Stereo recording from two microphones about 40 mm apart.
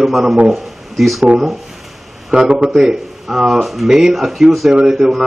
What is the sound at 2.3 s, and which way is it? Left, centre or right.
Speech, right.